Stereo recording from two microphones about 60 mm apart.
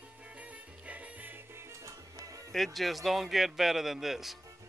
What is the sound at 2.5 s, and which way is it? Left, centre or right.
A man's voice, centre.